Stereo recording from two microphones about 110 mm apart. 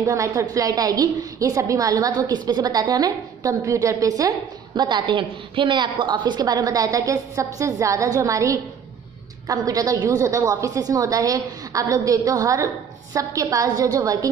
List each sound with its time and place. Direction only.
0.0 s a woman's voice: 30° right (ahead or behind)
4.7 s a woman's voice: 40° right (ahead or behind)